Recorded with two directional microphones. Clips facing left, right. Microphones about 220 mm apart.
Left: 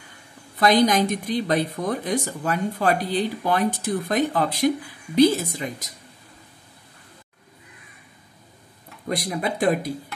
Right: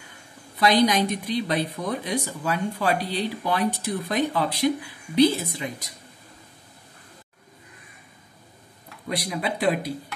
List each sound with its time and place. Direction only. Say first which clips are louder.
0.6 s speech: left 2 dB; 45° left (ahead or behind)
9.1 s speech: left 2 dB; 45° left (ahead or behind)